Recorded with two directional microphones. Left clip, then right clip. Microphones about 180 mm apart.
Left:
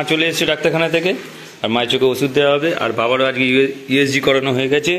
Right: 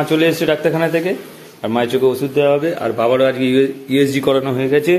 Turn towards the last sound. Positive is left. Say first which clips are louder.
# right 2 dB
turn(degrees=-5)  # may be behind; listen again after turning